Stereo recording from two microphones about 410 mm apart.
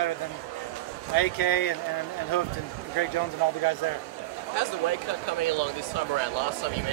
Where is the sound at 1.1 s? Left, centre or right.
Left.